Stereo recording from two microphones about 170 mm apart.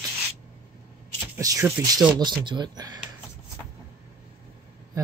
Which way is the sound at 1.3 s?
20° right (ahead or behind).